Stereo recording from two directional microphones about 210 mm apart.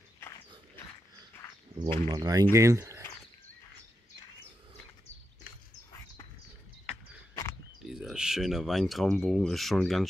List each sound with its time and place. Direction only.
1.8 s speech: 25° right (ahead or behind)
6.9 s a sound: 10° left (ahead or behind)
7.9 s speech: 5° right (ahead or behind)